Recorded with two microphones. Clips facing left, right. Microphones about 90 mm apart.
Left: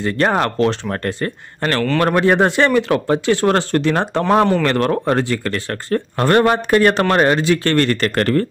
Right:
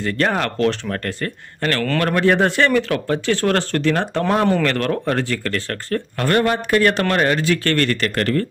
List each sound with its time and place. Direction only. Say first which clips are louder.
0.0 s speech: left 3 dB; 25° left (ahead or behind)